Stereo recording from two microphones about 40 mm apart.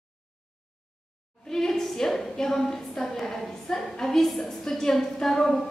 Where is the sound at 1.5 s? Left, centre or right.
Centre.